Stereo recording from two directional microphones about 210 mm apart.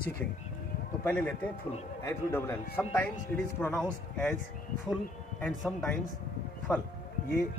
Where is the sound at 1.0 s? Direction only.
5° left (ahead or behind).